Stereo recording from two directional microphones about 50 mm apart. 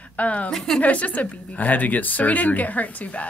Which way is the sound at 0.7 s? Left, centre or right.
Left.